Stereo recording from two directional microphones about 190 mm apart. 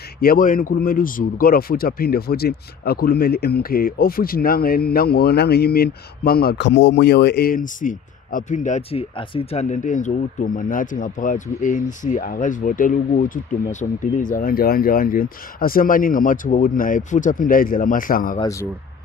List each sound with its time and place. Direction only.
0.2 s speech: 50° left (ahead or behind)
18.4 s speech: 15° left (ahead or behind)